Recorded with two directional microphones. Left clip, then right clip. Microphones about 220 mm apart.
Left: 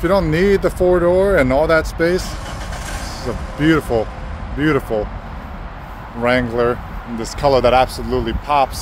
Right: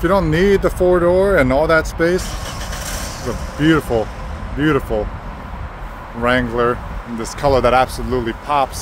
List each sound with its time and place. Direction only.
0.0 s speech: 5° right (ahead or behind)
3.5 s speech: centre (ahead or behind)
6.2 s speech: 5° left (ahead or behind)